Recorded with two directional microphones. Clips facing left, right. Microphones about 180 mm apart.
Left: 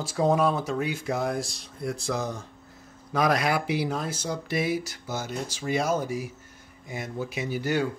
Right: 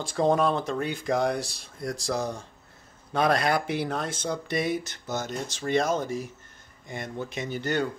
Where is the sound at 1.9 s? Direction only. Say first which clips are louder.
Right 2 dB; 35° right (ahead or behind).